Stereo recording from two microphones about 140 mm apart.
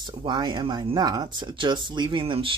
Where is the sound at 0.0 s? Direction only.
35° right (ahead or behind).